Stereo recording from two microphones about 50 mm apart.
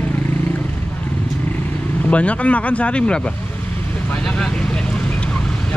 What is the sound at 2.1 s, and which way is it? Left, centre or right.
Speech, left.